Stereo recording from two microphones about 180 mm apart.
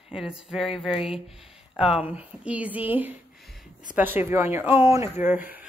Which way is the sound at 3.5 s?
Centre (ahead or behind).